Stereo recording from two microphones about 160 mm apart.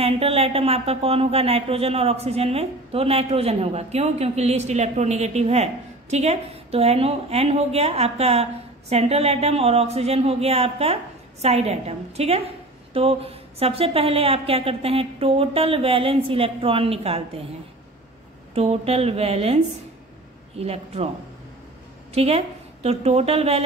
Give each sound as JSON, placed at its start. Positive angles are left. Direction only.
{"t": 0.0, "sound": "a woman's voice", "side_deg": -40}
{"t": 18.5, "sound": "a woman's voice", "side_deg": -40}
{"t": 22.1, "sound": "a woman's voice", "side_deg": -40}